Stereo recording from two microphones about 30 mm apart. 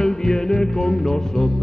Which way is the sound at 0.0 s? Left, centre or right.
Left.